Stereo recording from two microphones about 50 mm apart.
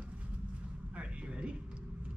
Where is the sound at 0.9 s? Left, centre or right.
Right.